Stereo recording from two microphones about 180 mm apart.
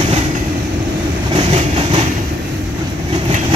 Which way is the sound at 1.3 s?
30° right (ahead or behind).